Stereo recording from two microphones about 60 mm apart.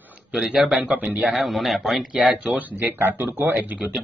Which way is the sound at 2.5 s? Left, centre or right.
Right.